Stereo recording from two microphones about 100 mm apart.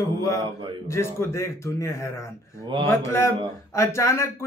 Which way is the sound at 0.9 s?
25° left (ahead or behind).